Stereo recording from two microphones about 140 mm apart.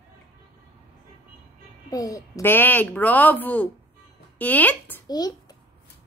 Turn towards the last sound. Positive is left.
turn(degrees=30)  # may be behind; listen again after turning